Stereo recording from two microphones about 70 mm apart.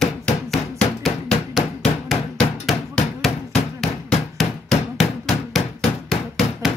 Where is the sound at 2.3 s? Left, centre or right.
Centre.